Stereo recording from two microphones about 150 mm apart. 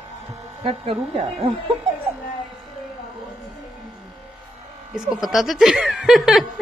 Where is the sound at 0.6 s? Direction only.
40° right (ahead or behind).